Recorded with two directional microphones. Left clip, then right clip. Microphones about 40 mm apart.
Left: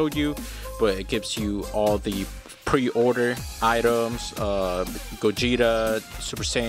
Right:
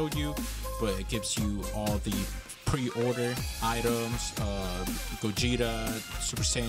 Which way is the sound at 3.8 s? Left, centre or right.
Right.